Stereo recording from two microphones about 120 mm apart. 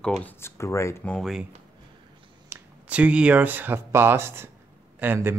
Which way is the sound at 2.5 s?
10° right (ahead or behind).